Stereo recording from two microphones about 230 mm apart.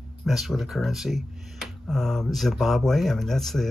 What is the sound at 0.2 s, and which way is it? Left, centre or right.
Speech, centre.